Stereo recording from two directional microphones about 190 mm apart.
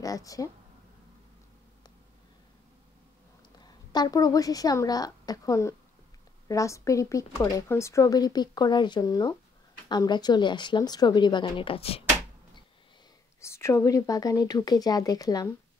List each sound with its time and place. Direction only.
0.0 s speech: 20° left (ahead or behind)
3.5 s a woman's voice: 20° left (ahead or behind)
13.4 s speech: 15° left (ahead or behind)